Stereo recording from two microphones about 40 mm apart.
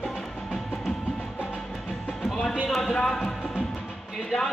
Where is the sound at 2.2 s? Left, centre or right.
Centre.